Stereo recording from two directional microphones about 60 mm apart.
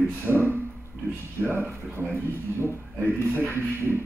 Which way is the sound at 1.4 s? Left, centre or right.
Right.